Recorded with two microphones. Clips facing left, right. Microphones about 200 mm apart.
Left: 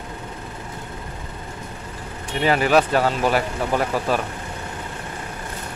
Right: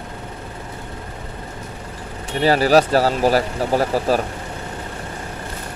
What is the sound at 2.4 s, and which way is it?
Speech, 35° right (ahead or behind).